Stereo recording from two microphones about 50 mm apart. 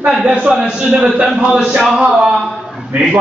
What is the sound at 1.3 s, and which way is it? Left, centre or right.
Speech, centre.